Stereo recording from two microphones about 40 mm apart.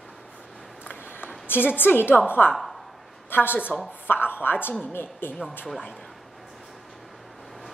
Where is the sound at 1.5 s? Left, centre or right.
Left.